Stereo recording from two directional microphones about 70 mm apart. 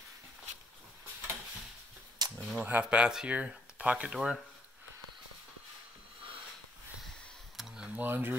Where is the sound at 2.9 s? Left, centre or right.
Centre.